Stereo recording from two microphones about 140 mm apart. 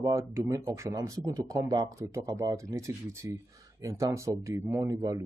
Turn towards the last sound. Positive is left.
turn(degrees=-25)  # may be behind; listen again after turning